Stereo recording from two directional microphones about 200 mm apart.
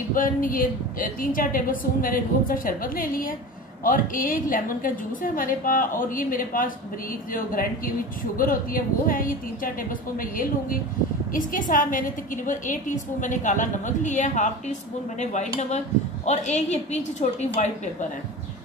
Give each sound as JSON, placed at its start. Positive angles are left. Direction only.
{"t": 0.1, "sound": "a woman's voice", "side_deg": 45}